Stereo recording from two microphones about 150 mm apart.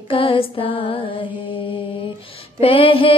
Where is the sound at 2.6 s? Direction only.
35° left (ahead or behind).